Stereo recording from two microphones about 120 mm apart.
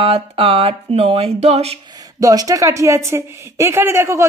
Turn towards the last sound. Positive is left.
turn(degrees=-20)  # may be behind; listen again after turning